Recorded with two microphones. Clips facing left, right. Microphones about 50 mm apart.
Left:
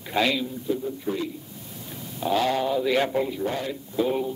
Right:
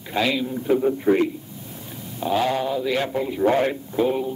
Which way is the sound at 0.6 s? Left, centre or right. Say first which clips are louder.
Right 11 dB; right.